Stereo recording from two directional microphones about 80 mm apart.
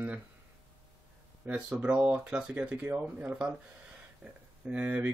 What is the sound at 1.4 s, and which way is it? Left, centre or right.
Speech, centre.